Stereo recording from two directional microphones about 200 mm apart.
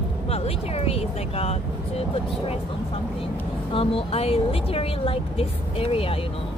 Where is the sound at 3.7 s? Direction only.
25° left (ahead or behind).